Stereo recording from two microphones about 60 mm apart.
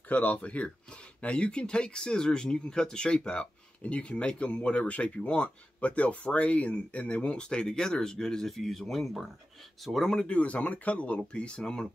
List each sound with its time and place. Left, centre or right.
0.1 s speech: left; by 10.2 s centre
10.2 s speech: left